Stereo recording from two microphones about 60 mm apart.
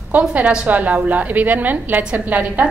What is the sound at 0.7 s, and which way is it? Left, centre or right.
A woman's voice, right.